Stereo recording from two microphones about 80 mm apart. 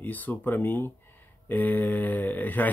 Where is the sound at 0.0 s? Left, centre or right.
Left.